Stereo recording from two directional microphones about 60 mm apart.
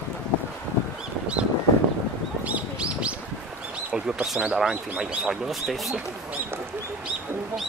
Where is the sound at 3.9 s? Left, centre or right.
Centre.